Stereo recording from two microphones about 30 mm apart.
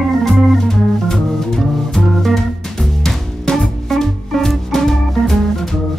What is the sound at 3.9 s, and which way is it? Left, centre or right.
Music, centre.